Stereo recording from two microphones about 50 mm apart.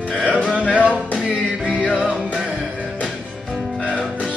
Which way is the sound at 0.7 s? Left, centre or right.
Right.